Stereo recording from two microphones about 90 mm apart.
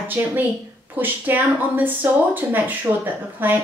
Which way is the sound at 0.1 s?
20° right (ahead or behind).